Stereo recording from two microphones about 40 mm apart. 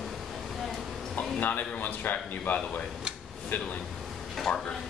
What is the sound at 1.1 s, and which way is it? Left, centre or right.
Speech, left.